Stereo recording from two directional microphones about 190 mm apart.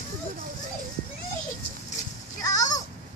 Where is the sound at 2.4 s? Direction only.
20° left (ahead or behind).